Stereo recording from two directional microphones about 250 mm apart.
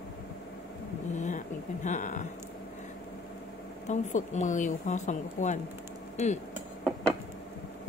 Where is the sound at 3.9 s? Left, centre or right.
Left.